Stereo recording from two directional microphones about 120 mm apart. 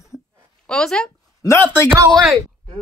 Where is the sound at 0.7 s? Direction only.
5° left (ahead or behind).